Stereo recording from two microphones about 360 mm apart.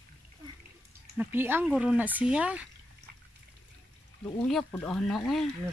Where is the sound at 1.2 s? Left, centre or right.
Centre.